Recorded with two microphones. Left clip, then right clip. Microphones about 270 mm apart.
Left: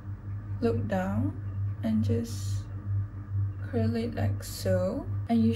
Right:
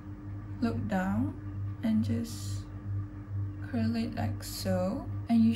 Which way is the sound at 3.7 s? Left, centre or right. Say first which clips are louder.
Left 3 dB; centre.